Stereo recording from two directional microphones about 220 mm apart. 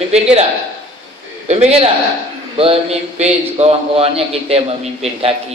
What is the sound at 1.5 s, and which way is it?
A man's voice, 30° right (ahead or behind).